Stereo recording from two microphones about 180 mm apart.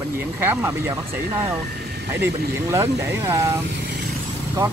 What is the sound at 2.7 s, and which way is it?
Speech, 15° right (ahead or behind).